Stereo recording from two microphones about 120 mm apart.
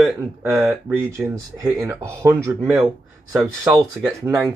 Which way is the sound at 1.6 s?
25° right (ahead or behind).